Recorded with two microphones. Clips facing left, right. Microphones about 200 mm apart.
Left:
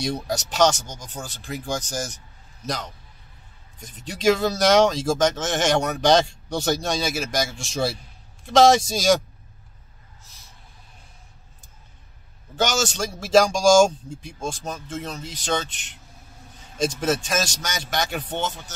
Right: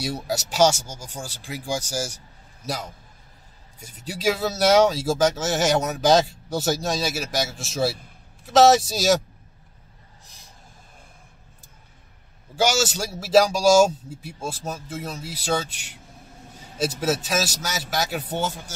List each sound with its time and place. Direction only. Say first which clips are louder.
0.0 s speech: left 1 dB; 5° right (ahead or behind)
12.5 s speech: right 1 dB; 10° right (ahead or behind)